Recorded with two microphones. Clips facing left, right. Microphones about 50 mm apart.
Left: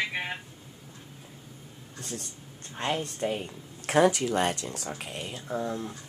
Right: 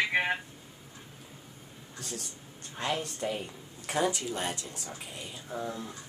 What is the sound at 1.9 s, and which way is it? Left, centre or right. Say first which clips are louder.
A woman's voice: left 2 dB; left.